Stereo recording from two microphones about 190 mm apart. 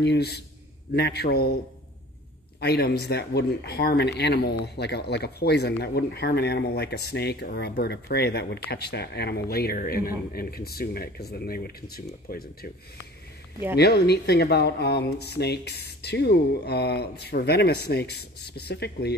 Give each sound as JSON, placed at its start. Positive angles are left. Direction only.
{"t": 0.0, "sound": "speech", "side_deg": 60}
{"t": 2.6, "sound": "speech", "side_deg": 60}
{"t": 13.7, "sound": "speech", "side_deg": 60}